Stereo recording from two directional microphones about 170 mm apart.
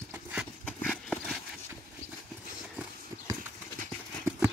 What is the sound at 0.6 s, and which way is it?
Horse, 10° left (ahead or behind).